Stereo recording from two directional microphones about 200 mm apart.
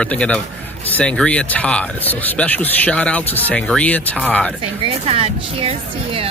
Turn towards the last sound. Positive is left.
turn(degrees=-30)  # may be behind; listen again after turning